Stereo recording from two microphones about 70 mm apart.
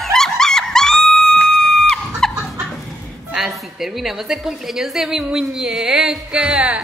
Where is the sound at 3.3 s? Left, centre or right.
Centre.